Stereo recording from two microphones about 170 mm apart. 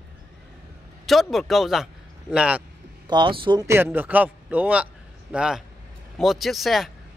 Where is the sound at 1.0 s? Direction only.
Centre (ahead or behind).